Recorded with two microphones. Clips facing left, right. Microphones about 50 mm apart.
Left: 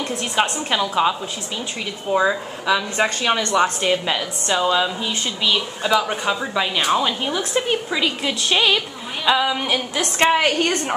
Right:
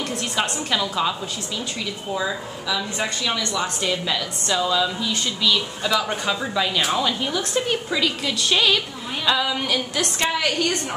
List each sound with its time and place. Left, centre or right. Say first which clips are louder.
0.2 s a woman's voice: left 6 dB; left
2.1 s a woman's voice: left 9 dB; left